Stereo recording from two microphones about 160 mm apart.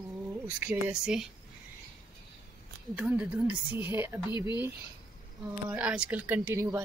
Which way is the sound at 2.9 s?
5° right (ahead or behind).